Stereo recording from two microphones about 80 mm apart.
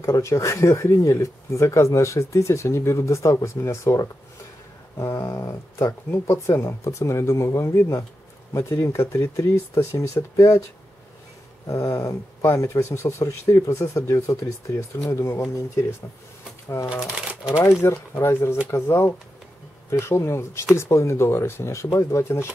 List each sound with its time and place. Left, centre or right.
0.0 s speech: left
11.6 s speech: left
16.6 s speech: left